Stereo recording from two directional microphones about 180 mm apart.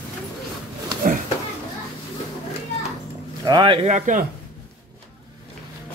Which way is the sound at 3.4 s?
25° right (ahead or behind).